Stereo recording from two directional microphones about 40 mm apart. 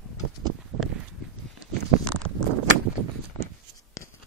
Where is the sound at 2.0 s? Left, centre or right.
Left.